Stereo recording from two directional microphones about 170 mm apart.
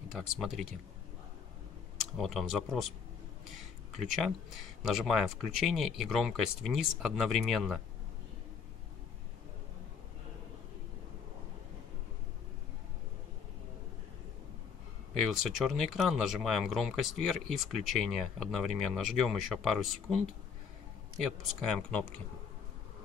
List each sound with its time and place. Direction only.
0.1 s speech: centre (ahead or behind)
2.1 s speech: centre (ahead or behind)
3.9 s speech: centre (ahead or behind)
15.1 s speech: centre (ahead or behind)
21.2 s speech: 5° left (ahead or behind)